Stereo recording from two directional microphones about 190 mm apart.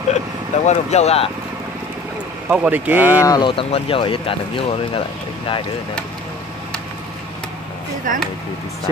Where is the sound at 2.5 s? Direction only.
5° right (ahead or behind).